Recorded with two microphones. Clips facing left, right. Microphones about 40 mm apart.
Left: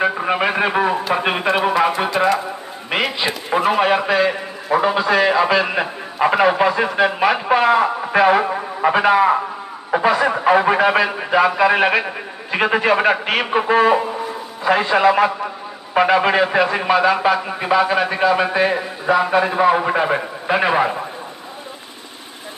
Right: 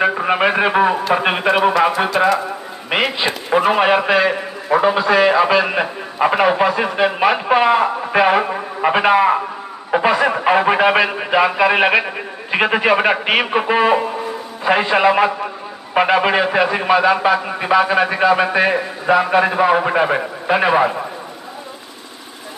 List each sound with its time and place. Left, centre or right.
0.0 s a man's voice: centre